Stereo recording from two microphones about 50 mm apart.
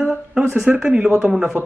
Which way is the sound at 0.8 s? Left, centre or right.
Right.